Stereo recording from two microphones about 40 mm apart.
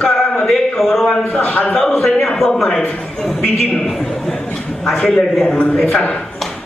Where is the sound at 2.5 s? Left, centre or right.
Centre.